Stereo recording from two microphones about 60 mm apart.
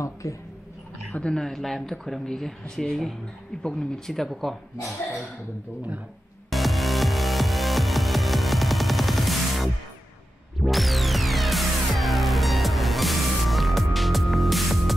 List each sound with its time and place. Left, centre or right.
0.0 s speech: left
1.3 s speech: centre
6.5 s music: centre